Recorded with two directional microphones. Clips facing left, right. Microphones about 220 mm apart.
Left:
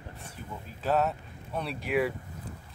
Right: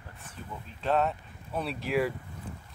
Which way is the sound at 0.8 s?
5° left (ahead or behind).